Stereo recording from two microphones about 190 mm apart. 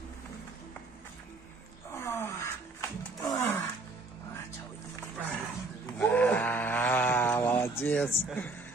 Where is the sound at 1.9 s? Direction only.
15° left (ahead or behind).